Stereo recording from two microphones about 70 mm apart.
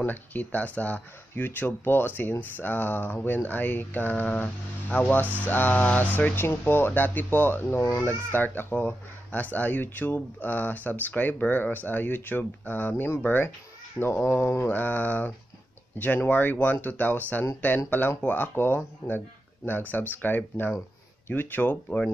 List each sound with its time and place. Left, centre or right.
0.0 s speech: left